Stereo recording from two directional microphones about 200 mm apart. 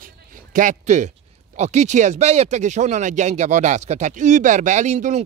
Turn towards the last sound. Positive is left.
turn(degrees=-35)  # may be behind; listen again after turning